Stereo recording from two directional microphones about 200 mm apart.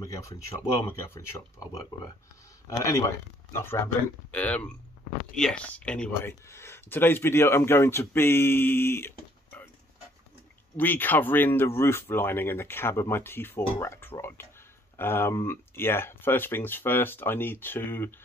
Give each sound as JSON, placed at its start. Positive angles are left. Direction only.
{"t": 0.0, "sound": "speech", "side_deg": 15}
{"t": 2.8, "sound": "speech", "side_deg": 15}
{"t": 10.8, "sound": "speech", "side_deg": 10}